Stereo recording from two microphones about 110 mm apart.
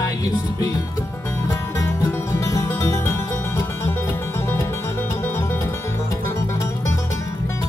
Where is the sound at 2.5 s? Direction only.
25° left (ahead or behind).